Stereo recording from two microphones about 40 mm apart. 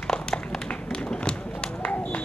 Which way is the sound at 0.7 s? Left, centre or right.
Left.